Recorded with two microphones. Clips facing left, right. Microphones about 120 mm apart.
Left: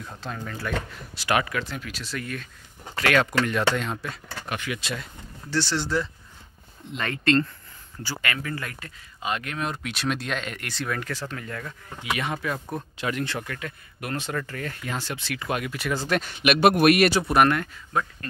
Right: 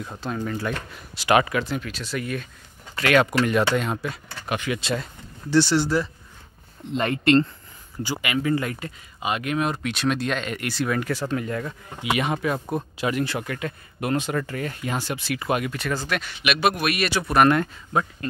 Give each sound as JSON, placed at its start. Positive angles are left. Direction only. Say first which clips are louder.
{"t": 0.0, "sound": "speech", "louder": "right 6 dB", "side_deg": -5}
{"t": 0.6, "sound": "speech", "louder": "right 1 dB", "side_deg": -20}
{"t": 1.8, "sound": "speech", "louder": "right 4 dB", "side_deg": 5}
{"t": 2.1, "sound": "speech", "louder": "right 5 dB", "side_deg": -10}
{"t": 4.6, "sound": "speech", "louder": "right 7 dB", "side_deg": -30}
{"t": 5.5, "sound": "speech", "louder": "right 6 dB", "side_deg": -15}
{"t": 6.9, "sound": "speech", "louder": "right 4 dB", "side_deg": -25}
{"t": 9.8, "sound": "speech", "louder": "right 4 dB", "side_deg": 0}
{"t": 12.9, "sound": "speech", "louder": "right 2 dB", "side_deg": -10}
{"t": 16.1, "sound": "a man's voice", "louder": "left 3 dB", "side_deg": 40}
{"t": 17.5, "sound": "speech", "louder": "right 5 dB", "side_deg": -20}